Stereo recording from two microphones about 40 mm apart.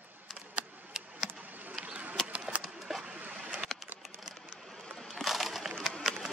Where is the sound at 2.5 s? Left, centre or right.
Right.